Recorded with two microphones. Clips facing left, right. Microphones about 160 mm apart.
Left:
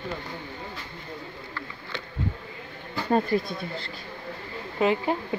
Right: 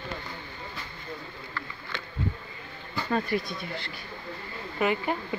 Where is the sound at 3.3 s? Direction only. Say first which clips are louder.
Left 4 dB; 35° left (ahead or behind).